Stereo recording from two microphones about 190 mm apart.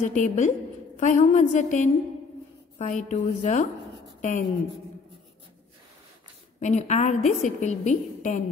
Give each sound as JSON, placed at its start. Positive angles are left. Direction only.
{"t": 0.0, "sound": "a woman's voice", "side_deg": 40}
{"t": 6.6, "sound": "a woman's voice", "side_deg": 40}